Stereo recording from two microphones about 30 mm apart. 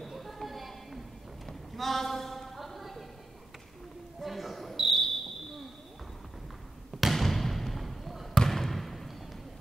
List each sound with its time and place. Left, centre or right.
0.2 s a sound: centre
4.2 s cricket: centre
7.0 s basketball bounce: centre
7.2 s basketball bounce: centre
8.5 s trickle: centre